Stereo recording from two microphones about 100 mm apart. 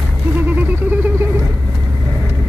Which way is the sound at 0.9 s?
20° right (ahead or behind).